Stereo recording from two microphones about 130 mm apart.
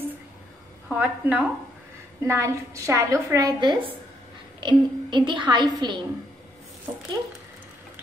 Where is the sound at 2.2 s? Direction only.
20° right (ahead or behind).